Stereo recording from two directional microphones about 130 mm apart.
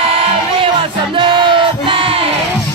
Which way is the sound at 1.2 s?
40° right (ahead or behind).